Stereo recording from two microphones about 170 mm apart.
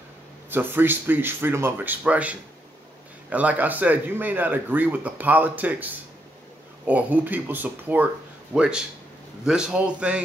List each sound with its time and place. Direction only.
0.5 s a man's voice: 10° right (ahead or behind)